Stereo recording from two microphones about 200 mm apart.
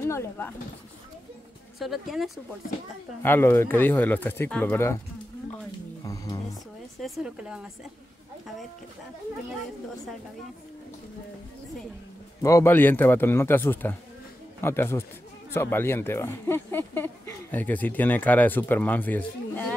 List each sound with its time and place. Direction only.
0.0 s speech: 10° left (ahead or behind)
1.8 s speech: centre (ahead or behind)
3.2 s speech: 10° left (ahead or behind)
6.0 s music: 15° left (ahead or behind)
7.0 s speech: 5° right (ahead or behind)
12.4 s speech: 15° left (ahead or behind)